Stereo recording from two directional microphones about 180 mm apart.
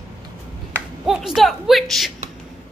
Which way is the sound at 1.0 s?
Centre (ahead or behind).